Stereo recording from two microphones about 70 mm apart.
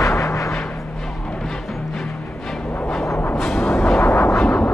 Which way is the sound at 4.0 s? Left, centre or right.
Left.